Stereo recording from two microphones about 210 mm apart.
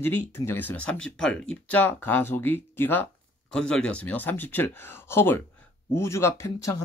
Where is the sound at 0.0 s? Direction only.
10° left (ahead or behind).